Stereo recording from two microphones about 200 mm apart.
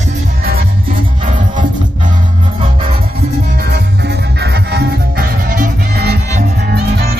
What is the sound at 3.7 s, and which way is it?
Music, 55° right (ahead or behind).